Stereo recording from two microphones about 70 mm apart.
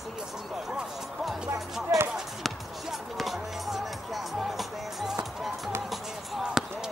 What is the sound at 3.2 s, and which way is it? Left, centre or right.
Music, centre.